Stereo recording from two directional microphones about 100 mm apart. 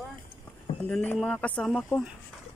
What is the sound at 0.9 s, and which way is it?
A man's voice, 15° left (ahead or behind).